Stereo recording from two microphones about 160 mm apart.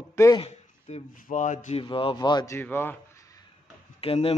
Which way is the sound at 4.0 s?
35° left (ahead or behind).